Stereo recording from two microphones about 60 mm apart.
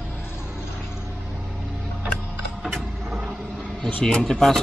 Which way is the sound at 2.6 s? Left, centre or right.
Centre.